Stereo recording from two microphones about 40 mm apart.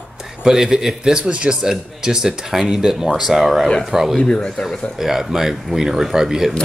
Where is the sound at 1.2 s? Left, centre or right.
Right.